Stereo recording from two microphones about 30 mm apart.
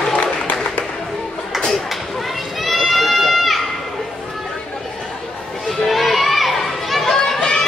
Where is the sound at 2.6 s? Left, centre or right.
Centre.